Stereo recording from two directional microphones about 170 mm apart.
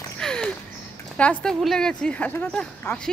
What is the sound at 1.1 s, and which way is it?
Speech, 5° left (ahead or behind).